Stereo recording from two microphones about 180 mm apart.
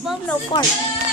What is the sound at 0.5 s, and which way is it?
Speech, 25° left (ahead or behind).